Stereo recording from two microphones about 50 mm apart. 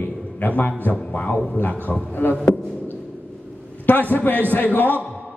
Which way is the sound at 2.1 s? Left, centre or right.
Left.